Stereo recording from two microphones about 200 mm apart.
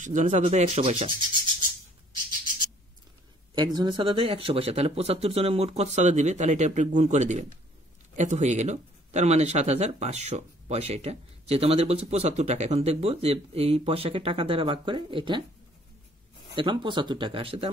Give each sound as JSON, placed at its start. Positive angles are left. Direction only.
{"t": 0.0, "sound": "speech", "side_deg": -40}
{"t": 3.5, "sound": "speech", "side_deg": -20}
{"t": 16.5, "sound": "speech", "side_deg": -20}